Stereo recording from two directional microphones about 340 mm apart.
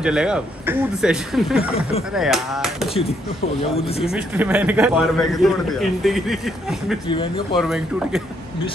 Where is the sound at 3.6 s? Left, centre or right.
Centre.